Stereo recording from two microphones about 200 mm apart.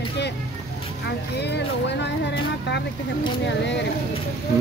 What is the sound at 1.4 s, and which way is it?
Speech, 60° left (ahead or behind).